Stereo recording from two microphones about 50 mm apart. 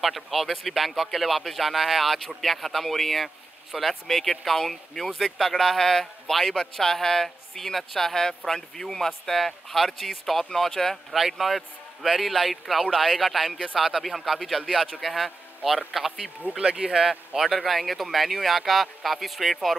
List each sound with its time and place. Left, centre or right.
0.0 s speech: centre
16.5 s speech: centre